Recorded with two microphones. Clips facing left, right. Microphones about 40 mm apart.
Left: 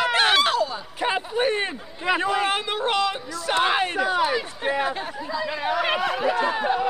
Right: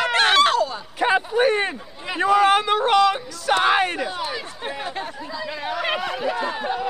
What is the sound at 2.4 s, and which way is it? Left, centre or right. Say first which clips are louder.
Speech: right 7 dB; right.